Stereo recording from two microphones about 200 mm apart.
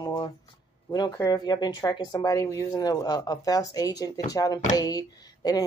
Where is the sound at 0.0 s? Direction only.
25° left (ahead or behind).